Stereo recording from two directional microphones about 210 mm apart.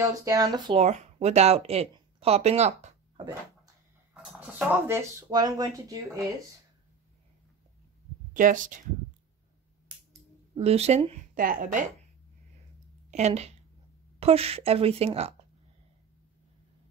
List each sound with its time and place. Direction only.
0.2 s speech: 15° right (ahead or behind)
0.7 s speech: 30° right (ahead or behind)
4.1 s speech: 5° right (ahead or behind)
8.3 s speech: 40° right (ahead or behind)
10.5 s speech: 30° right (ahead or behind)
11.3 s speech: 40° right (ahead or behind)
13.1 s a woman's voice: 30° right (ahead or behind)